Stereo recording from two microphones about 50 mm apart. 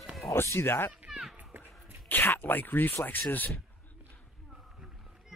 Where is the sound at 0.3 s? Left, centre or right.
Left.